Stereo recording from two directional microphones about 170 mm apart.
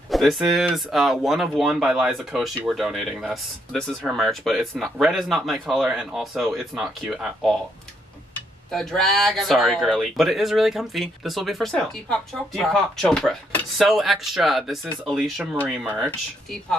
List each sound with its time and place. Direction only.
0.1 s speech: centre (ahead or behind)
8.7 s speech: centre (ahead or behind)